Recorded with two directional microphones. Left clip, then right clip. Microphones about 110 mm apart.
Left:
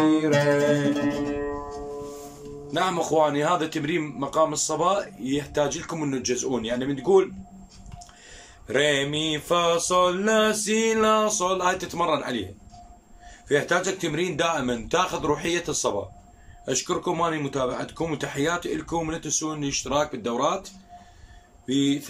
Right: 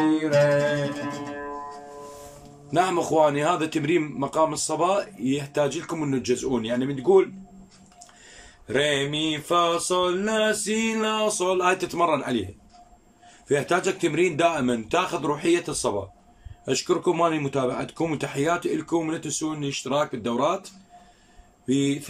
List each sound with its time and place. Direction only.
0.1 s mantra: 5° left (ahead or behind)
0.9 s music: 35° left (ahead or behind)
2.7 s a man's voice: 15° right (ahead or behind)
8.6 s mantra: centre (ahead or behind)
13.5 s a man's voice: 15° right (ahead or behind)
21.6 s a man's voice: 10° right (ahead or behind)